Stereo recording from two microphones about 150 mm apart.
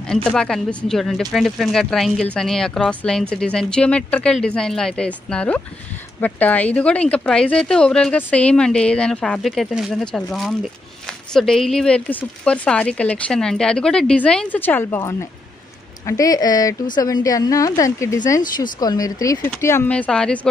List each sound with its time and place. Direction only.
0.1 s a woman's voice: 5° left (ahead or behind)